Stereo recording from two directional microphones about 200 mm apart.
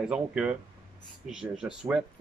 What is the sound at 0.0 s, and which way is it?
Speech, 5° right (ahead or behind).